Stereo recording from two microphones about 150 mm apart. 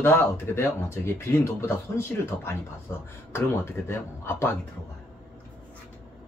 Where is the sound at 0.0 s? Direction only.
15° left (ahead or behind).